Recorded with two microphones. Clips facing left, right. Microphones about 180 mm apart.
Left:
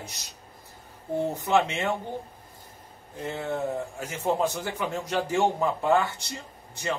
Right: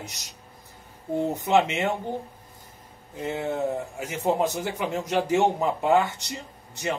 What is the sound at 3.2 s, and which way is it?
A man's voice, 15° right (ahead or behind).